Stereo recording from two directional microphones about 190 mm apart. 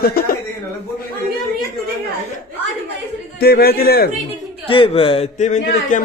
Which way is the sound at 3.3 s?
55° left (ahead or behind).